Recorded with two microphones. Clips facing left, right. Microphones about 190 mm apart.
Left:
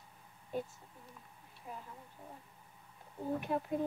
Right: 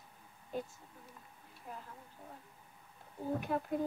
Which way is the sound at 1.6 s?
Centre (ahead or behind).